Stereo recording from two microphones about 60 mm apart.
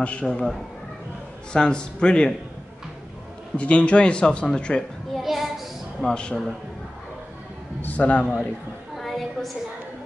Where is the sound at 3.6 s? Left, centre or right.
Centre.